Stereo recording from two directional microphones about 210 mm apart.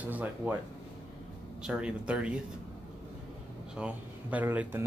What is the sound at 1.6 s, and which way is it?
Speech, 5° right (ahead or behind).